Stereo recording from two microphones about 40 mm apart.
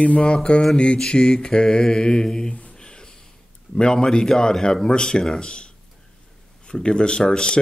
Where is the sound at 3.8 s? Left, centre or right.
Left.